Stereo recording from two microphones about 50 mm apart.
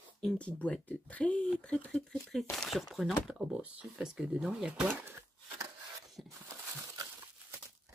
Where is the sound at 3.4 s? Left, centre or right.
Right.